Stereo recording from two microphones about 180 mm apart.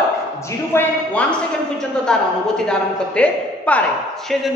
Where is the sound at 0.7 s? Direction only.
10° left (ahead or behind).